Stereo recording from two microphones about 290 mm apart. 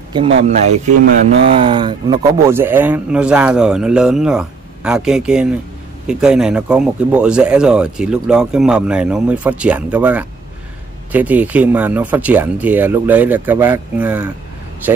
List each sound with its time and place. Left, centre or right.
0.4 s speech: right; by 14.3 s centre